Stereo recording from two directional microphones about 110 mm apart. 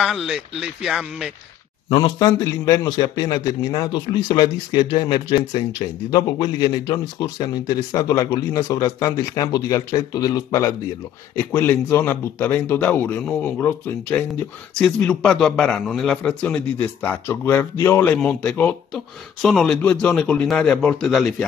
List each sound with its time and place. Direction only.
0.0 s speech: centre (ahead or behind)
2.0 s a man's voice: 35° left (ahead or behind)
11.3 s a man's voice: 20° left (ahead or behind)
14.8 s a man's voice: 10° left (ahead or behind)
18.2 s a man's voice: 10° left (ahead or behind)